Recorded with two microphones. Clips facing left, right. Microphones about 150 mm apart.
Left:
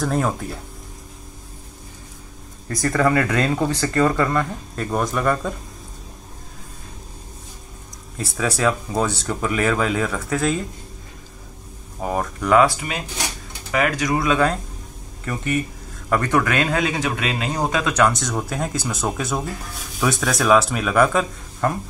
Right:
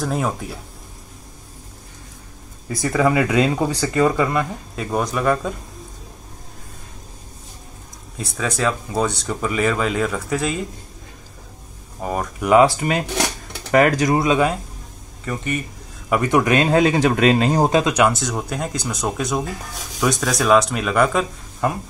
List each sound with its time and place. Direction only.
0.0 s speech: centre (ahead or behind)
2.7 s speech: 5° right (ahead or behind)
8.2 s speech: 5° left (ahead or behind)
12.0 s speech: centre (ahead or behind)
12.4 s speech: 15° right (ahead or behind)
13.1 s dishes: 70° right (ahead or behind)
13.7 s speech: 40° right (ahead or behind)
14.1 s speech: 20° right (ahead or behind)
15.2 s speech: centre (ahead or behind)
16.1 s speech: 15° right (ahead or behind)
16.5 s speech: 30° right (ahead or behind)
17.8 s speech: 10° right (ahead or behind)